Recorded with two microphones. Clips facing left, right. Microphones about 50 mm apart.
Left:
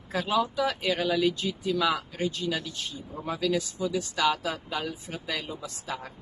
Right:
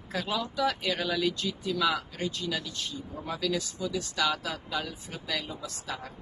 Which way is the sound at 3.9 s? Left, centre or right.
Centre.